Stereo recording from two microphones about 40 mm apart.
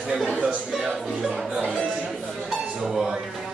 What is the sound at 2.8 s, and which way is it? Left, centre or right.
Speech, centre.